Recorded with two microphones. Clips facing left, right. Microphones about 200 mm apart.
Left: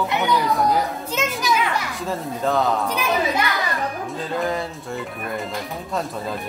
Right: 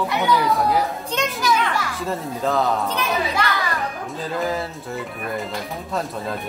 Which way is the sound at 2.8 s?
10° left (ahead or behind).